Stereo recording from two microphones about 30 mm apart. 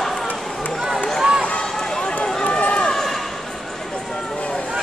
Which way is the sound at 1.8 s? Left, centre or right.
Left.